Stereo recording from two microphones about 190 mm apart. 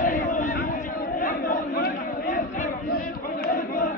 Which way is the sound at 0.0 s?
45° left (ahead or behind).